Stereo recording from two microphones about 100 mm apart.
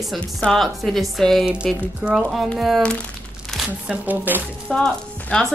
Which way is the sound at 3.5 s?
10° right (ahead or behind).